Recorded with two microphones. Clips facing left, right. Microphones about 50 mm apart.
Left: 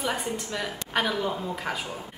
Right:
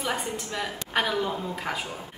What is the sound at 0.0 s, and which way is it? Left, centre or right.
A woman's voice, centre.